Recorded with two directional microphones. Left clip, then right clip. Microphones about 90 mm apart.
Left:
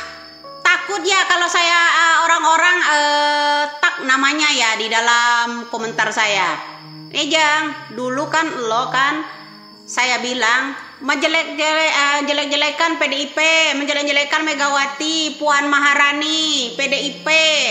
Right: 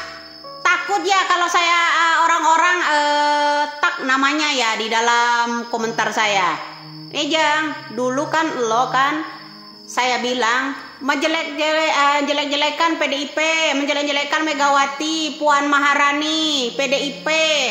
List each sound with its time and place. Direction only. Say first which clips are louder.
0.7 s a woman's voice: left 1 dB; 30° right (ahead or behind)